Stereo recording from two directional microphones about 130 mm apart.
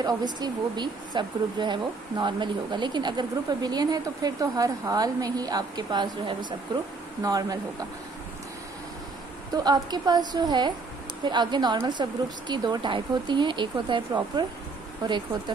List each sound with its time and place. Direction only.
0.0 s speech: 30° right (ahead or behind)
9.5 s speech: 30° right (ahead or behind)